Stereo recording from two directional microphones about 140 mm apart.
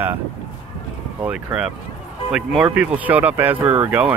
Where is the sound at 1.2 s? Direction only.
5° right (ahead or behind).